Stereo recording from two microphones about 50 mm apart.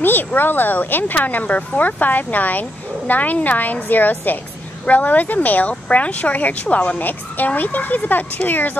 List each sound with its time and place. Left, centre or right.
0.0 s speech: left